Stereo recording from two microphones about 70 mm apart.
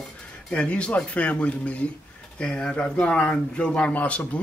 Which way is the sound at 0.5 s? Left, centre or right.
Centre.